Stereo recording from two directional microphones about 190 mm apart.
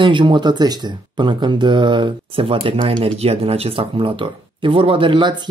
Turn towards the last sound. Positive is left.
turn(degrees=-25)  # may be behind; listen again after turning